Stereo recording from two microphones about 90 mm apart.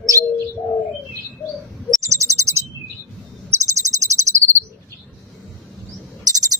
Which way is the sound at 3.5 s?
35° right (ahead or behind).